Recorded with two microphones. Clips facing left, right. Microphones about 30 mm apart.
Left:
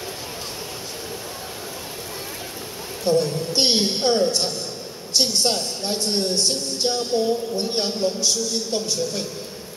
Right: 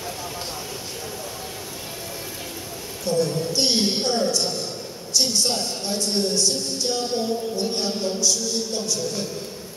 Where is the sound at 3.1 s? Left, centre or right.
Left.